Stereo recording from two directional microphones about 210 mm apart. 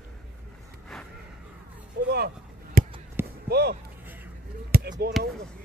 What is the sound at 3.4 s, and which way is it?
Speech, 50° right (ahead or behind).